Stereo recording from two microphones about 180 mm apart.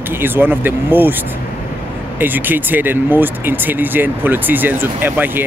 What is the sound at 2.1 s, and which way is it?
Speech, 10° right (ahead or behind).